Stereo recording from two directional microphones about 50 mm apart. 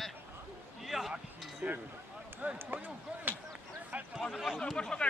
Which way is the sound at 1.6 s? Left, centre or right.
Right.